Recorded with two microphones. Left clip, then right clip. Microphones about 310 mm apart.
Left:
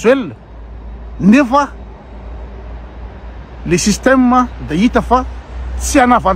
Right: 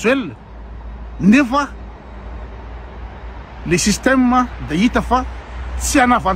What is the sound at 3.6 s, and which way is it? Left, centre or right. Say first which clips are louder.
Speech: left 3 dB; centre.